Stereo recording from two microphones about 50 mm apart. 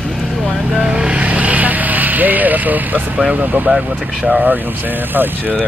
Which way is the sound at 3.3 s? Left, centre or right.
Right.